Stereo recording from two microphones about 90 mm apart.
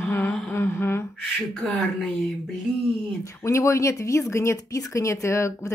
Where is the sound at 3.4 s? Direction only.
30° left (ahead or behind).